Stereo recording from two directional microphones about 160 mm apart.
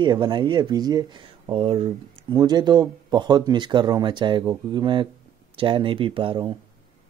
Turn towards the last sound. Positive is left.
turn(degrees=-30)  # may be behind; listen again after turning